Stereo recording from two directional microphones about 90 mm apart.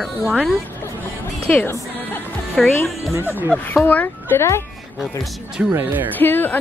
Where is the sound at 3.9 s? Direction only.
20° left (ahead or behind).